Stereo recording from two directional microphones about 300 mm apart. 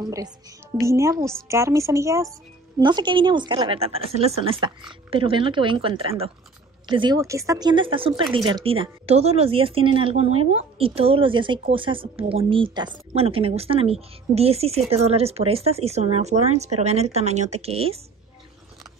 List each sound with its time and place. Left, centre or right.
0.0 s speech: centre